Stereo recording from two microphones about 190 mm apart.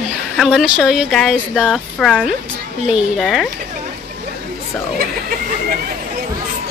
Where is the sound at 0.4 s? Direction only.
5° right (ahead or behind).